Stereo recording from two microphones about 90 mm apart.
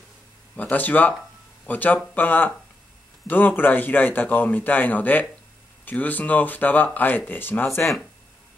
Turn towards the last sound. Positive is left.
turn(degrees=25)  # may be behind; listen again after turning